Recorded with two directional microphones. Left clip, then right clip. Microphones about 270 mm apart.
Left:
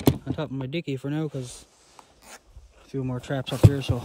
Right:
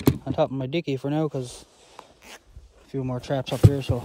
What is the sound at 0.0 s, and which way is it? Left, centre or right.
Speech, centre.